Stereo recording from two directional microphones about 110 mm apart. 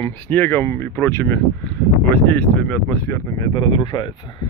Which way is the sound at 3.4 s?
45° left (ahead or behind).